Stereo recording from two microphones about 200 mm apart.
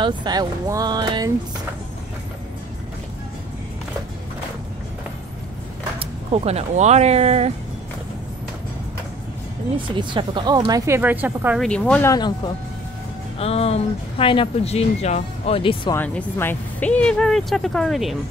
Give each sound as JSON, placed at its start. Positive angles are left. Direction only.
{"t": 0.0, "sound": "speech", "side_deg": -20}
{"t": 5.9, "sound": "speech", "side_deg": -30}
{"t": 9.8, "sound": "speech", "side_deg": -25}
{"t": 11.0, "sound": "a woman's voice", "side_deg": -10}
{"t": 11.6, "sound": "speech", "side_deg": 5}
{"t": 12.1, "sound": "speech", "side_deg": 20}
{"t": 15.9, "sound": "speech", "side_deg": 10}